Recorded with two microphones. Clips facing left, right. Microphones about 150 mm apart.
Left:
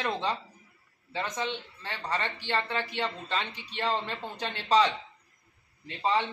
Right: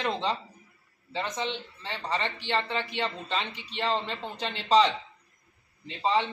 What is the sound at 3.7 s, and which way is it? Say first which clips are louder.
Speech: right 1 dB; 10° left (ahead or behind).